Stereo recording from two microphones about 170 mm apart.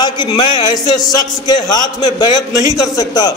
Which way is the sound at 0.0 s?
25° left (ahead or behind).